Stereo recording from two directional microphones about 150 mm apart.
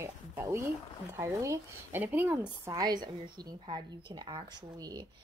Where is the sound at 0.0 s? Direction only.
20° right (ahead or behind).